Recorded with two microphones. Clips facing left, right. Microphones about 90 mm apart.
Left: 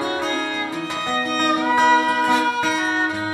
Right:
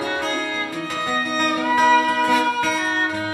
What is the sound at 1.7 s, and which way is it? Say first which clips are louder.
Music: right 1 dB; 20° left (ahead or behind).